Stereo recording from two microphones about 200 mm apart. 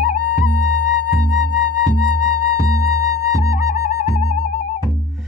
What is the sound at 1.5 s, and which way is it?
Music, 40° left (ahead or behind).